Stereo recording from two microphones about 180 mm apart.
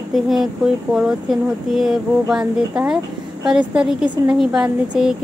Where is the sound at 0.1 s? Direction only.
Centre (ahead or behind).